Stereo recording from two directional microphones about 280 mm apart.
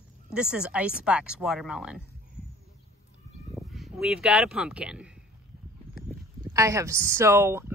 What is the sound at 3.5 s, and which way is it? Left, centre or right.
Speech, centre.